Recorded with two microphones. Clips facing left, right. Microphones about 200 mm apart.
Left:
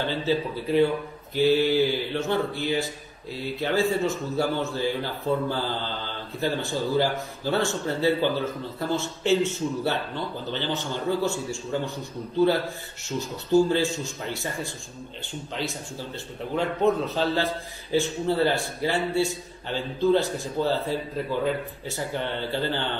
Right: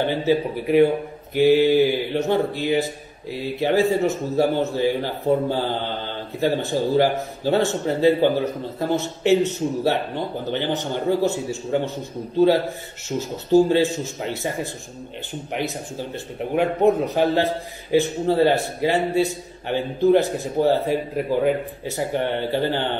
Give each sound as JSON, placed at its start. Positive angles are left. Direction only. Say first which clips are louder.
{"t": 0.0, "sound": "a man's voice", "louder": "right 5 dB", "side_deg": -15}